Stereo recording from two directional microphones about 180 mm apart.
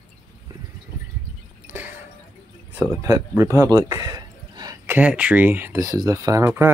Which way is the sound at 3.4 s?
20° right (ahead or behind).